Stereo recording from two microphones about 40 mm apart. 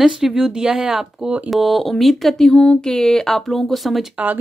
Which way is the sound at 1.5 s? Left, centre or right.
Centre.